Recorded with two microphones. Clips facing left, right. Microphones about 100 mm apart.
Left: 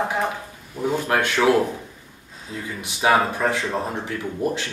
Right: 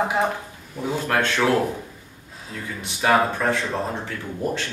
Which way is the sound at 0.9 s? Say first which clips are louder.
Even; 15° left (ahead or behind).